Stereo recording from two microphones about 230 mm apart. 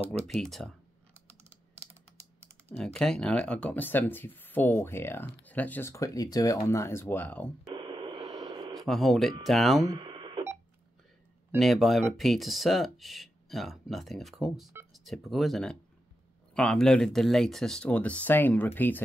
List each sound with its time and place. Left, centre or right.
0.3 s speech: centre
2.7 s speech: centre
7.7 s radio: right
8.7 s speech: centre
9.8 s a sound: right
11.5 s speech: centre